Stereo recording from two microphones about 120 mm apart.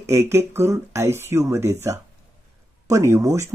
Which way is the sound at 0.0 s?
20° right (ahead or behind).